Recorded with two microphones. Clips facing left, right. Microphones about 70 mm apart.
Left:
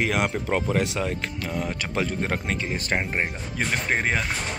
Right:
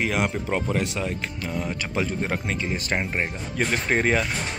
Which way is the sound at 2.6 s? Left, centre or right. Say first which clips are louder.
Even; left.